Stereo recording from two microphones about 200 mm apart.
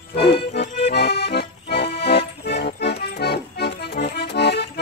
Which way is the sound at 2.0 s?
55° left (ahead or behind).